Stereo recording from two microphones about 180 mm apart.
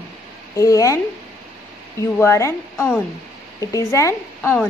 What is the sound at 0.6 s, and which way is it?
Speech, 20° left (ahead or behind).